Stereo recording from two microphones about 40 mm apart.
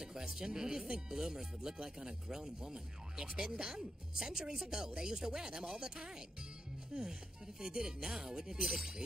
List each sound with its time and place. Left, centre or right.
0.0 s speech: centre